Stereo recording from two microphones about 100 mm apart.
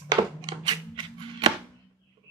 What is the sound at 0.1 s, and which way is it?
Music, 40° right (ahead or behind).